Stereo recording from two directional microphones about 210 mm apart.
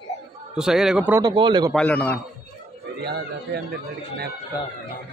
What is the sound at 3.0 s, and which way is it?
Speech, 50° right (ahead or behind).